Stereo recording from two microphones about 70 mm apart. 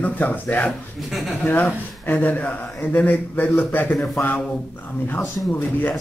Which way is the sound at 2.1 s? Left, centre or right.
Left.